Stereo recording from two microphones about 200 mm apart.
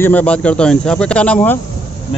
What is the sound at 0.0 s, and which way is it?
Speech, 5° left (ahead or behind).